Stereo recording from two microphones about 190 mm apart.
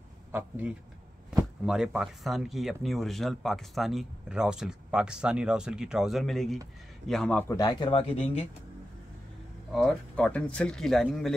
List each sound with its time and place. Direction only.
0.3 s a man's voice: 10° right (ahead or behind); by 7.5 s 5° left (ahead or behind)
7.5 s speech: 25° left (ahead or behind)
9.7 s speech: centre (ahead or behind)